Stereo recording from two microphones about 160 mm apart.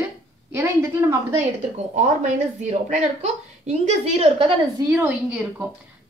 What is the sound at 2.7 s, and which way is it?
A woman's voice, 45° right (ahead or behind).